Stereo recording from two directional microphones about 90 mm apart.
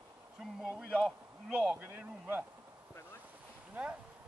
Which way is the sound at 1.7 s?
20° right (ahead or behind).